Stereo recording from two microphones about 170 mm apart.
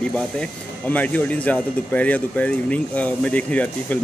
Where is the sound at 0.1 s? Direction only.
5° left (ahead or behind).